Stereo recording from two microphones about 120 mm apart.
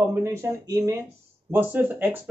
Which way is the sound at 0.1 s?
20° right (ahead or behind).